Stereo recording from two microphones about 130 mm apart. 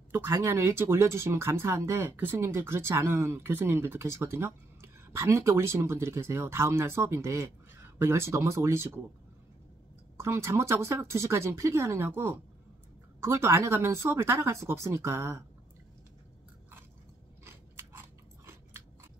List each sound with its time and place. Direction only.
0.1 s speech: 20° right (ahead or behind)
10.1 s speech: 20° right (ahead or behind)
17.7 s biting: 20° right (ahead or behind)